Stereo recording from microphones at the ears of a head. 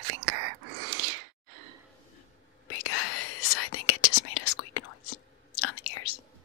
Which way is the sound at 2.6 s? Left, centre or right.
Left.